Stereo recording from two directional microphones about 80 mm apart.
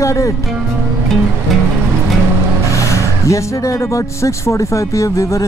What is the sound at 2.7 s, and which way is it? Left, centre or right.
Speech, left.